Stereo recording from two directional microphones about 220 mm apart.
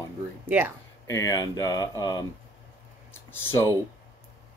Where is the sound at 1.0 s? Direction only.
15° left (ahead or behind).